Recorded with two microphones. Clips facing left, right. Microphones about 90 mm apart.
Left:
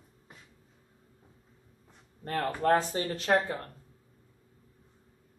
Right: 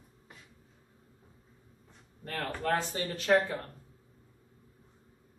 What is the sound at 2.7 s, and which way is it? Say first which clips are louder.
Speech: left 5 dB; 35° left (ahead or behind).